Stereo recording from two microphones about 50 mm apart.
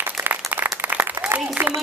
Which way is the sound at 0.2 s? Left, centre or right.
Right.